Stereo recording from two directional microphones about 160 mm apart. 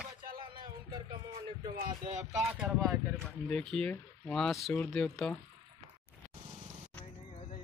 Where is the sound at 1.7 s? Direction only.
50° right (ahead or behind).